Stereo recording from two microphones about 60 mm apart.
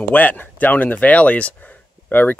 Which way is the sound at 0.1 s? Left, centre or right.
Left.